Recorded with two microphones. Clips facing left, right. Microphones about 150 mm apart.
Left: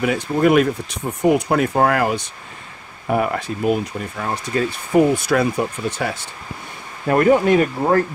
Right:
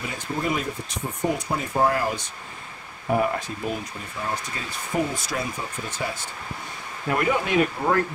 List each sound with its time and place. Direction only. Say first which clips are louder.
0.0 s speech: left 11 dB; 75° left (ahead or behind)
7.1 s speech: left 9 dB; 45° left (ahead or behind)